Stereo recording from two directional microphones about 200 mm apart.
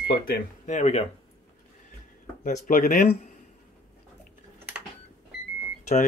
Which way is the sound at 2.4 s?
45° left (ahead or behind).